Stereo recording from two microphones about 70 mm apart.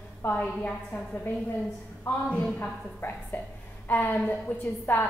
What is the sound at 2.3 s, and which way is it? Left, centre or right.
Speech, centre.